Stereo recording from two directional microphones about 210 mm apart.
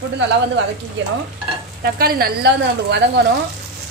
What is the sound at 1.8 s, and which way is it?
Speech, 45° right (ahead or behind).